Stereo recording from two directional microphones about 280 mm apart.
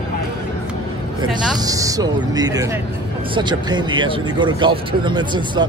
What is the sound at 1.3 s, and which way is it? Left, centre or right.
Speech, centre.